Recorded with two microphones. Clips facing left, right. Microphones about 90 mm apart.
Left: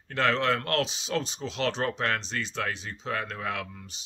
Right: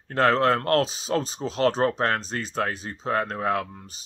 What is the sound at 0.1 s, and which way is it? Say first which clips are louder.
Speech: right 5 dB; 40° right (ahead or behind).